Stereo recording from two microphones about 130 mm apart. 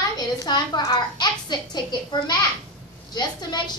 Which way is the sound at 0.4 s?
30° left (ahead or behind).